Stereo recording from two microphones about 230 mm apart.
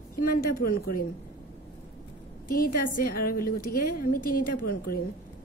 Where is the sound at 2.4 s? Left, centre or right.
Left.